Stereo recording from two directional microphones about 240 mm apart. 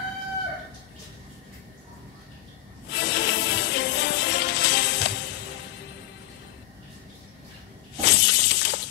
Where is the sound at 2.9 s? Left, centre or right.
Left.